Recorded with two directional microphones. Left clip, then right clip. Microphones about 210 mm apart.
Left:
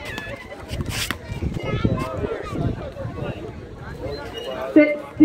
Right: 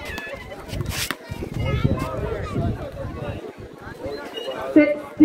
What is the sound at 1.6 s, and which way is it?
Run, 55° right (ahead or behind).